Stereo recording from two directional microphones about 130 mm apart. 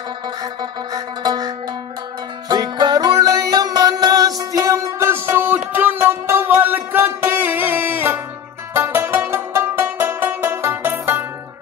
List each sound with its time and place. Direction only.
0.4 s music: 30° right (ahead or behind); by 11.2 s 15° right (ahead or behind)